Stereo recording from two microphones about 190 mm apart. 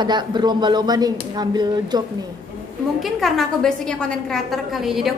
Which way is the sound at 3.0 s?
Centre (ahead or behind).